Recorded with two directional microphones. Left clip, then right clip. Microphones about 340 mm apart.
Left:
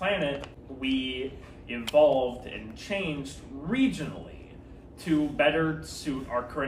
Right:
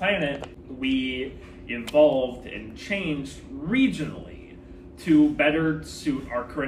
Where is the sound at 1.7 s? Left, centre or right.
Centre.